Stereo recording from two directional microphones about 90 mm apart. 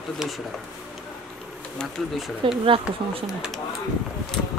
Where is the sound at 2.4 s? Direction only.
70° right (ahead or behind).